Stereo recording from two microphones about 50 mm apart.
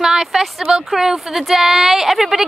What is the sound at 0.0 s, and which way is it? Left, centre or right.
Speech, centre.